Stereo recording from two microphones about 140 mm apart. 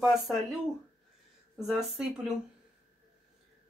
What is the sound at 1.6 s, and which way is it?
Speech, centre (ahead or behind).